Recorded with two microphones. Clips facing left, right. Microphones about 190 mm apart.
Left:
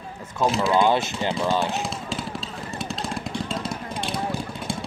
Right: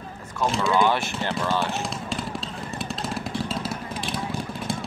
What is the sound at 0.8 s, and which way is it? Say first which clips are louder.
Speech: left 2 dB; 20° left (ahead or behind).